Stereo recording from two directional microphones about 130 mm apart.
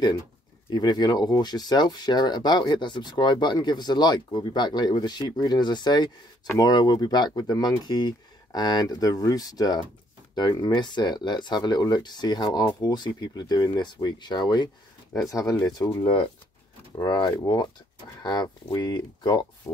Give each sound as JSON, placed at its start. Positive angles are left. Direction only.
{"t": 0.7, "sound": "speech", "side_deg": 35}